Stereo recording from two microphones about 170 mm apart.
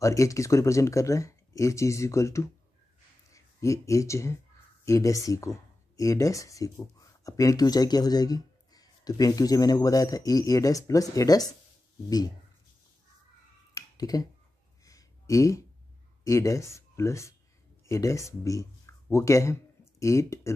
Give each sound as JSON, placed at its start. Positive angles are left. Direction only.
{"t": 0.0, "sound": "speech", "side_deg": 20}
{"t": 13.7, "sound": "a sound", "side_deg": 20}
{"t": 16.3, "sound": "speech", "side_deg": 20}